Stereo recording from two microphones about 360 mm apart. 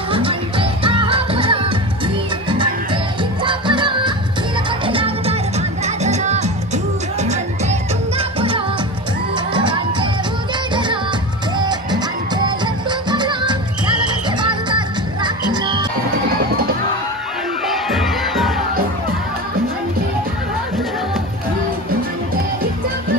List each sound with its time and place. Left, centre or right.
0.1 s music: centre
17.6 s crowd: centre